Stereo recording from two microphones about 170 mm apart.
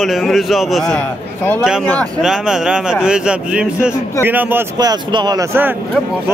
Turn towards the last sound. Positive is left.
turn(degrees=-25)  # may be behind; listen again after turning